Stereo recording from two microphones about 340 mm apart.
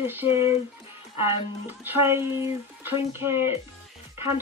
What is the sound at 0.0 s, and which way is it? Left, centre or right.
Speech, centre.